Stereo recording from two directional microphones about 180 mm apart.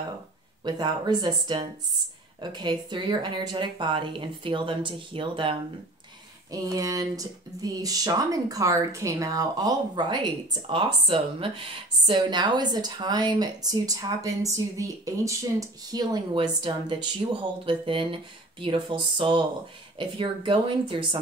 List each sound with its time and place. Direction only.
0.7 s speech: 25° right (ahead or behind)